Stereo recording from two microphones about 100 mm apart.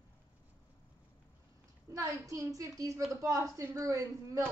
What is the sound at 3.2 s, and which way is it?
A woman's voice, 35° right (ahead or behind).